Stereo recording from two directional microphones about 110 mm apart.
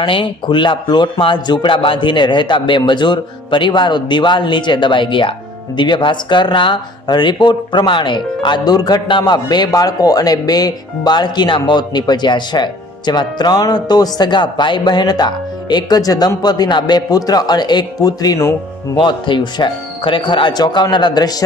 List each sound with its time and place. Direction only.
0.0 s speech: 50° left (ahead or behind)
18.9 s speech: 45° left (ahead or behind)